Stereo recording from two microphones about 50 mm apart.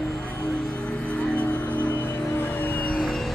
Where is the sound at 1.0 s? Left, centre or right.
Left.